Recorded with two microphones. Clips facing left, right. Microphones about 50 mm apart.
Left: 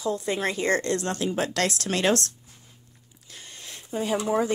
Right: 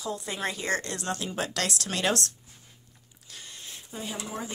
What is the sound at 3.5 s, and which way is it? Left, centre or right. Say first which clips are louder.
Speech: left 10 dB; left.